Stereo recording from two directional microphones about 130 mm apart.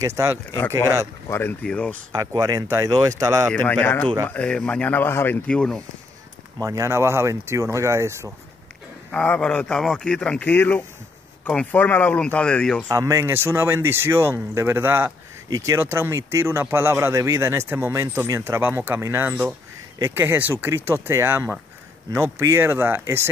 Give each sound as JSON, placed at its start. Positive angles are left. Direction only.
{"t": 0.0, "sound": "speech", "side_deg": -20}
{"t": 0.5, "sound": "speech", "side_deg": 20}
{"t": 1.3, "sound": "speech", "side_deg": 10}
{"t": 2.1, "sound": "speech", "side_deg": -25}
{"t": 3.5, "sound": "speech", "side_deg": 15}
{"t": 6.6, "sound": "speech", "side_deg": -25}
{"t": 9.1, "sound": "speech", "side_deg": 10}
{"t": 12.8, "sound": "speech", "side_deg": -25}